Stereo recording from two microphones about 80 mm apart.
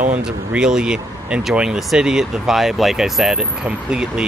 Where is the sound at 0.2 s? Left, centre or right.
Centre.